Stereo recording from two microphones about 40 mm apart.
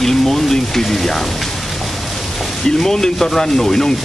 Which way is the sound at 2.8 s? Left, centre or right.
Centre.